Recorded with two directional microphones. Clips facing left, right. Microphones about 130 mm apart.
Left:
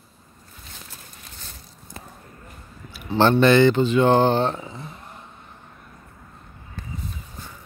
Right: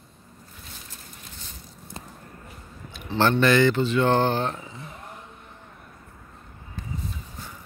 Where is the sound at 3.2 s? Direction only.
25° left (ahead or behind).